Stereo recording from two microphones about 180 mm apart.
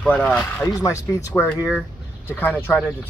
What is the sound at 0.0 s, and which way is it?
A man's voice, 10° left (ahead or behind).